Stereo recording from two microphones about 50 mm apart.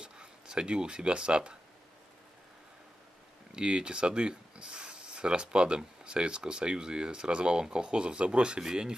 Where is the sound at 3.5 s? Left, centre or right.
Centre.